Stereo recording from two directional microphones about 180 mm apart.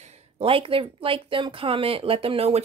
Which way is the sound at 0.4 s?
30° right (ahead or behind).